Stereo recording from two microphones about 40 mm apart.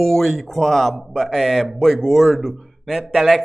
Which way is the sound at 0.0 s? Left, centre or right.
Centre.